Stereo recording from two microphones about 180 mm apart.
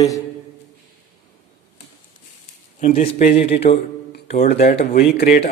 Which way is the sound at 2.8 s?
35° left (ahead or behind).